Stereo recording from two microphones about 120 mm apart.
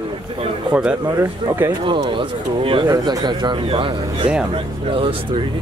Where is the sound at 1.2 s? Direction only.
15° right (ahead or behind).